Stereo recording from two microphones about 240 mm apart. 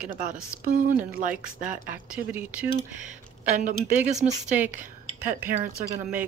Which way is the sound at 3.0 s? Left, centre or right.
Right.